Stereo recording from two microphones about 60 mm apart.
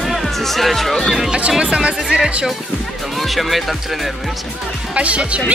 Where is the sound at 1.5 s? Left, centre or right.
Centre.